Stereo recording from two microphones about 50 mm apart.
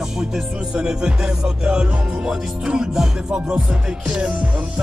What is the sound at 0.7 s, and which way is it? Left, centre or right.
Music, centre.